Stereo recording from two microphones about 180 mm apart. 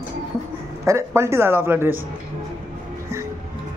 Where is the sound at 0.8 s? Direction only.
15° right (ahead or behind).